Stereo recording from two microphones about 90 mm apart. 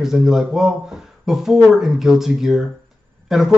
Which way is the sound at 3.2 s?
Centre (ahead or behind).